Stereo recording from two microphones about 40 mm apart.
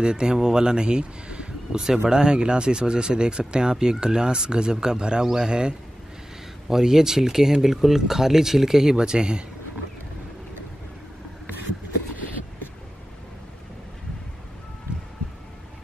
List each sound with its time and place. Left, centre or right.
0.0 s speech: right
6.7 s speech: centre
8.9 s speech: right